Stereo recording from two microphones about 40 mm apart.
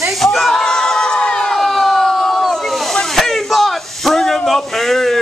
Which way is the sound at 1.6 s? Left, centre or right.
Centre.